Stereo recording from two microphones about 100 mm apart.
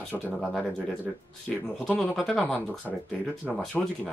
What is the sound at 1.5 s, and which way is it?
Speech, 5° left (ahead or behind).